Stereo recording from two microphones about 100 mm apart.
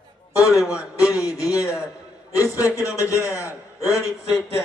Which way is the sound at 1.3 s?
35° left (ahead or behind).